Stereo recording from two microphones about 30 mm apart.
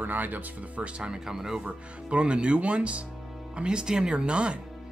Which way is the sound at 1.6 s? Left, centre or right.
Right.